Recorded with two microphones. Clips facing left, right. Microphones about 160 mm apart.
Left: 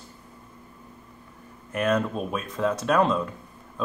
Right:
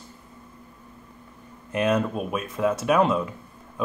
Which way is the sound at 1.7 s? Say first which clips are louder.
Right 1 dB; 15° right (ahead or behind).